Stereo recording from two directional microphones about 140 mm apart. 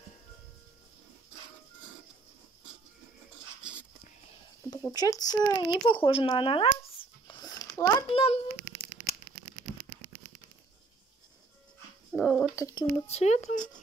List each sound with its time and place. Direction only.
4.9 s speech: 25° left (ahead or behind); by 6.9 s 40° left (ahead or behind)
7.2 s a sound: 30° left (ahead or behind)
8.1 s speech: 45° left (ahead or behind)
12.1 s a sound: 5° left (ahead or behind)
12.5 s speech: 25° left (ahead or behind)
12.9 s speech: 50° left (ahead or behind)